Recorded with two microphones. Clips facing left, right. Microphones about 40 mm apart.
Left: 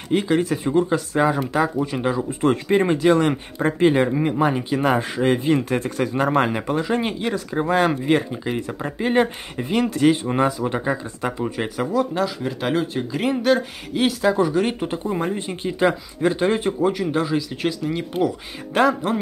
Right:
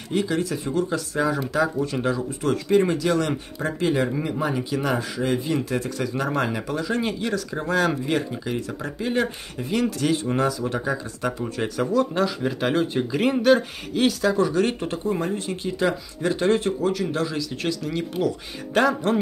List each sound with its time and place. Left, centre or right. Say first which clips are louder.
0.1 s speech: left 4 dB; left
2.4 s speech: left 2 dB; left; by 12.0 s centre
12.0 s speech: even; centre
14.2 s speech: left 2 dB; centre
15.1 s speech: left 2 dB; left; by 19.1 s centre